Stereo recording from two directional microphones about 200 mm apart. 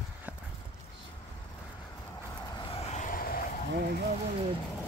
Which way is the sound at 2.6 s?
30° left (ahead or behind).